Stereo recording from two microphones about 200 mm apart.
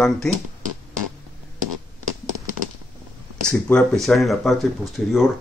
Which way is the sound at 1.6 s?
40° right (ahead or behind).